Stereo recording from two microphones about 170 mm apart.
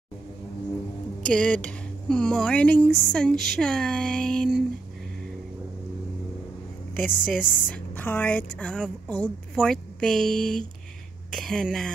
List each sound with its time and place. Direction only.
1.3 s a woman's voice: 5° left (ahead or behind)
7.0 s a woman's voice: 10° left (ahead or behind)